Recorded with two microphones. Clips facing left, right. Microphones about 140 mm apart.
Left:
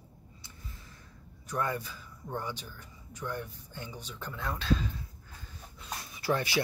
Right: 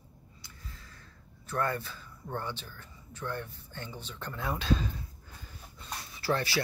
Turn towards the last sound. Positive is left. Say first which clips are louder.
# left 1 dB
turn(degrees=15)  # may be behind; listen again after turning